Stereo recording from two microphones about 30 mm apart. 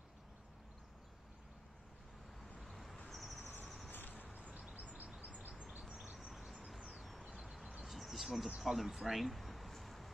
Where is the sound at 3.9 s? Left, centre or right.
Left.